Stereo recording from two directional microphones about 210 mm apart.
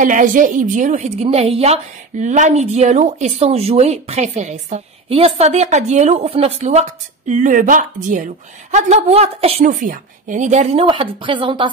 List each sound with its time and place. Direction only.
0.0 s a woman's voice: 40° right (ahead or behind); by 11.7 s 25° right (ahead or behind)